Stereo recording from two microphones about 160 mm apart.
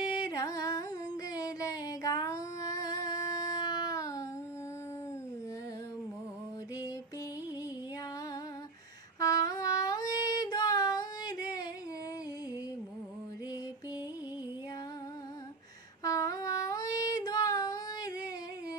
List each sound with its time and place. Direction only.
0.3 s carnatic music: 20° left (ahead or behind)
1.3 s a sound: 20° left (ahead or behind)
9.2 s singing: 20° left (ahead or behind)
16.0 s child singing: 20° left (ahead or behind)